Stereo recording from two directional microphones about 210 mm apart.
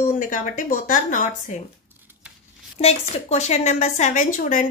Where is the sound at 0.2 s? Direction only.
40° left (ahead or behind).